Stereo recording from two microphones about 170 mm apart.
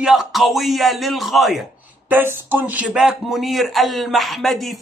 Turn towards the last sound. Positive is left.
turn(degrees=0)  # may be behind; listen again after turning